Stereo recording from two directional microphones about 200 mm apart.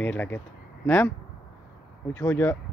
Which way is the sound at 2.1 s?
10° left (ahead or behind).